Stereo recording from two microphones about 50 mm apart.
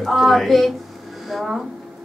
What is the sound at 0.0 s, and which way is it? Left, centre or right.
Speech, centre.